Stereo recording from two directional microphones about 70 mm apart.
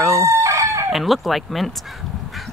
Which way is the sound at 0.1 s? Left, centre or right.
Right.